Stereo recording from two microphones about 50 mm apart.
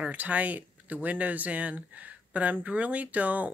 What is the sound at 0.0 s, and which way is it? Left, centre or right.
Speech, right.